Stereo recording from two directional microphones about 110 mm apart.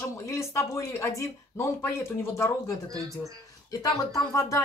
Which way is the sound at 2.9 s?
30° right (ahead or behind).